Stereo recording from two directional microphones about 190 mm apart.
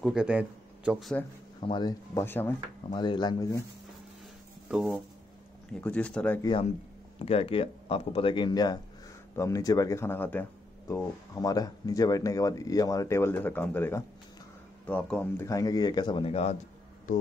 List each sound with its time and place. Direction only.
0.0 s speech: 5° right (ahead or behind)
1.6 s speech: 25° left (ahead or behind)
2.9 s speech: 25° left (ahead or behind)
4.6 s speech: 5° right (ahead or behind)
6.4 s speech: 25° left (ahead or behind)